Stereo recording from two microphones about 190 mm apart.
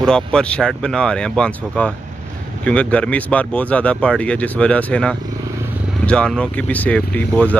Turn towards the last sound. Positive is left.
turn(degrees=5)  # may be behind; listen again after turning